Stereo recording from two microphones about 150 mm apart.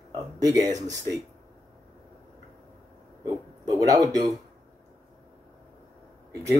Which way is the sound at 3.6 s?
25° right (ahead or behind).